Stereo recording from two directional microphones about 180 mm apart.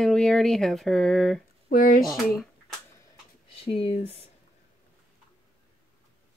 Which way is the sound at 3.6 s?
35° left (ahead or behind).